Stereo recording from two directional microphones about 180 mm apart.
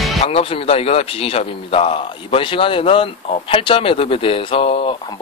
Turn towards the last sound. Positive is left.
turn(degrees=30)  # may be behind; listen again after turning